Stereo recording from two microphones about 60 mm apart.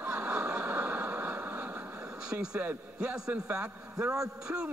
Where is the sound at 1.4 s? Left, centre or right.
Centre.